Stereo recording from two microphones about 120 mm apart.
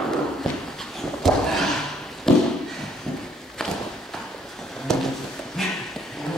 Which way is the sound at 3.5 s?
5° left (ahead or behind).